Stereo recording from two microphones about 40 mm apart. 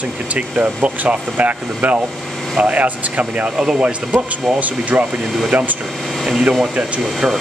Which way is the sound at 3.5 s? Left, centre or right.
Centre.